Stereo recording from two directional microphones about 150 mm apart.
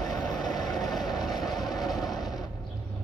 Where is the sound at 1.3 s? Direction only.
Centre (ahead or behind).